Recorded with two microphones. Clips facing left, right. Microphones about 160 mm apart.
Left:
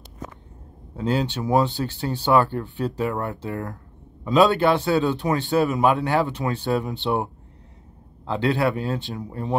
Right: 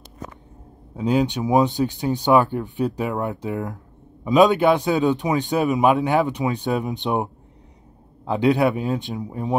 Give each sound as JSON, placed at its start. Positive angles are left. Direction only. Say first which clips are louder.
{"t": 0.9, "sound": "a man's voice", "louder": "right 4 dB", "side_deg": -15}
{"t": 8.3, "sound": "a man's voice", "louder": "right 4 dB", "side_deg": -15}